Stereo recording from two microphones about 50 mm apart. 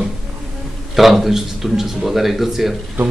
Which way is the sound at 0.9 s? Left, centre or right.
Centre.